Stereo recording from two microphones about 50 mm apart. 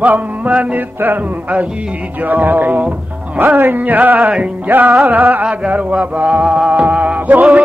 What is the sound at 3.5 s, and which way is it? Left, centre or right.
Speech, right.